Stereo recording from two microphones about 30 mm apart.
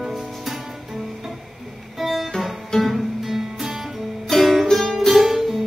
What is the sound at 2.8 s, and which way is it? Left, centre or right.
Music, centre.